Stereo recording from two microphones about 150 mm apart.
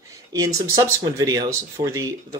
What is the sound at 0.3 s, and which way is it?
Speech, 20° right (ahead or behind).